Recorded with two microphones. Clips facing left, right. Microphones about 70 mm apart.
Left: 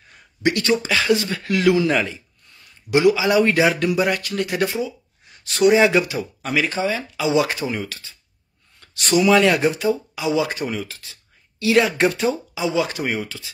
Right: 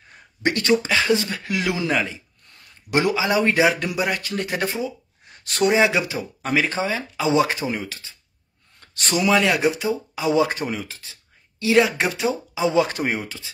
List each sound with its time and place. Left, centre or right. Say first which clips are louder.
0.4 s speech: even; right; by 2.0 s centre
2.9 s speech: left 4 dB; right
3.3 s speech: left 2 dB; right
4.2 s speech: left 3 dB; right
5.8 s speech: left 3 dB; centre
6.0 s speech: even; right
9.1 s speech: left 4 dB; right
9.4 s speech: left 3 dB; centre
10.1 s speech: right 1 dB; right
10.7 s speech: left 1 dB; right
12.5 s speech: right 2 dB; right